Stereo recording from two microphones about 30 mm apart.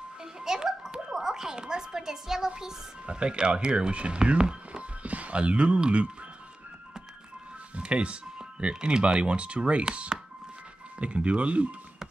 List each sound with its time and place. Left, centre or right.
0.2 s a child's voice: right
3.1 s speech: right
5.0 s speech: right
7.7 s music: right
8.5 s speech: right